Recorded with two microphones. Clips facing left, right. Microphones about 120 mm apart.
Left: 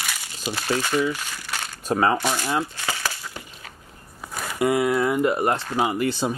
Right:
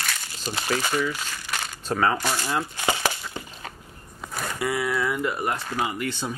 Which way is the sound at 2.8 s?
20° right (ahead or behind).